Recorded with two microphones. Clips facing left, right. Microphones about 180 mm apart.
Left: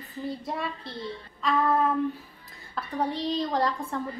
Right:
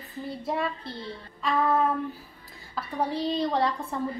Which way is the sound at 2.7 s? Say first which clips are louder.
Even; centre (ahead or behind).